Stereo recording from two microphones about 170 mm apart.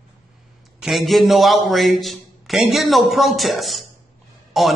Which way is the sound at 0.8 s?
Centre (ahead or behind).